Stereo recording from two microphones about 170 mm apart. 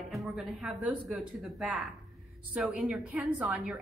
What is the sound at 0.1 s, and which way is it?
Speech, centre (ahead or behind).